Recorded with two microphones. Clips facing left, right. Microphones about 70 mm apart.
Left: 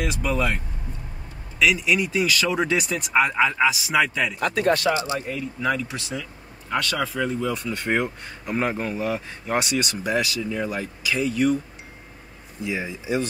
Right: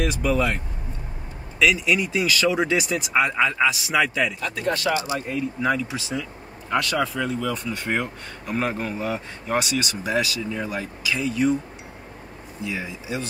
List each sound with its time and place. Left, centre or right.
0.0 s speech: centre
1.6 s speech: centre
4.4 s speech: left
5.0 s speech: centre
5.6 s speech: centre
12.6 s speech: centre